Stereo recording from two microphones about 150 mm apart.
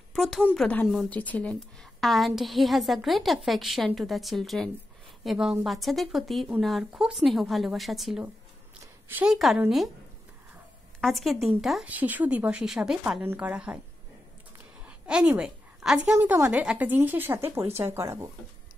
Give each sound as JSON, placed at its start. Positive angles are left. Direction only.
{"t": 0.1, "sound": "a woman's voice", "side_deg": 0}
{"t": 11.0, "sound": "a woman's voice", "side_deg": 0}
{"t": 14.9, "sound": "a woman's voice", "side_deg": -5}